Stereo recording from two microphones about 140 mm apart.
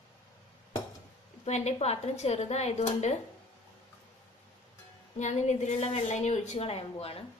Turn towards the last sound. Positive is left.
turn(degrees=45)  # may be behind; listen again after turning